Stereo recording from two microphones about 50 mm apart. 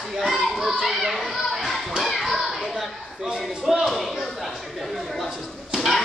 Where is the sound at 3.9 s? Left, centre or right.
Centre.